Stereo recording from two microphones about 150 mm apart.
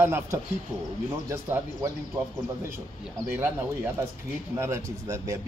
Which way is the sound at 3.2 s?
15° right (ahead or behind).